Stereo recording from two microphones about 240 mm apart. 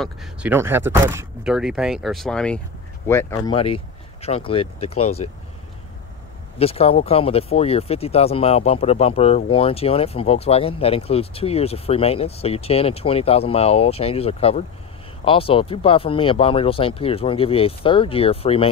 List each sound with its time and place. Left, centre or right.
0.0 s speech: centre
3.5 s speech: left
6.6 s speech: left